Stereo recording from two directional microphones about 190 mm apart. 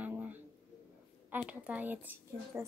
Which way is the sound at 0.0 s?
10° right (ahead or behind).